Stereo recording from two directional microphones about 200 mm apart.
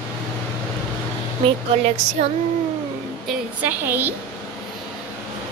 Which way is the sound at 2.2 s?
30° right (ahead or behind).